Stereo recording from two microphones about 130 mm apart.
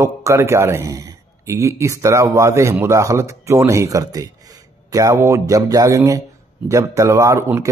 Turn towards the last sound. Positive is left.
turn(degrees=-20)  # may be behind; listen again after turning